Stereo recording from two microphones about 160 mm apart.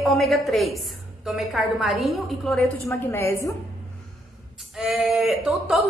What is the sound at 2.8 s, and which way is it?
Speech, 15° left (ahead or behind).